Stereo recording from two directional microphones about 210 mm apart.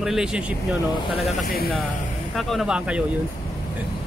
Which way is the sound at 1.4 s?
45° left (ahead or behind).